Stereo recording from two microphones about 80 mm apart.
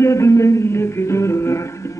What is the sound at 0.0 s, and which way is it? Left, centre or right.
Music, left.